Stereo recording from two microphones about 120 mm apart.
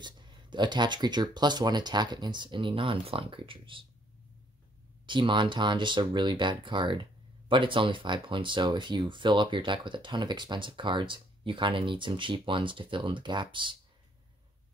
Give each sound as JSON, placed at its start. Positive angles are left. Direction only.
{"t": 0.0, "sound": "speech", "side_deg": -40}
{"t": 5.0, "sound": "speech", "side_deg": -40}